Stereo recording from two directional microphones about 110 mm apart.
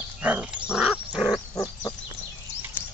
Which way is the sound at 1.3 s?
30° left (ahead or behind).